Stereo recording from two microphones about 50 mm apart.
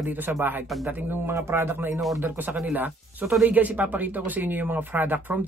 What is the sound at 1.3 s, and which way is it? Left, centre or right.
Speech, right.